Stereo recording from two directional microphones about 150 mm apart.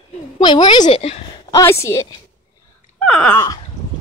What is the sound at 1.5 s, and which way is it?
Speech, 20° left (ahead or behind).